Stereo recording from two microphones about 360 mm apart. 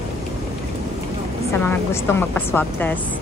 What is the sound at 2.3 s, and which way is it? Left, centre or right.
Speech, centre.